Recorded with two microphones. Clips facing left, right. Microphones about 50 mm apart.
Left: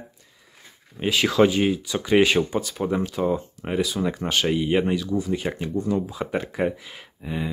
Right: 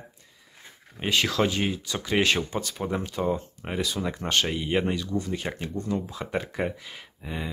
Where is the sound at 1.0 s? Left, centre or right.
Centre.